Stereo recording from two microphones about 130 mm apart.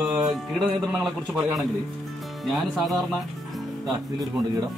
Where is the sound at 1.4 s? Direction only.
Centre (ahead or behind).